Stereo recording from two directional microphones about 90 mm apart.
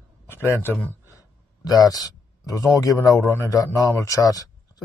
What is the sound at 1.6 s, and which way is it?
Speech, 45° left (ahead or behind).